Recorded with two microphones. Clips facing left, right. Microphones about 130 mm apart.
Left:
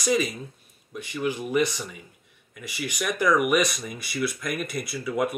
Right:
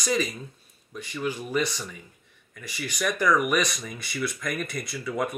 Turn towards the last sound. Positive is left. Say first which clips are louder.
# left 3 dB
turn(degrees=10)  # may be behind; listen again after turning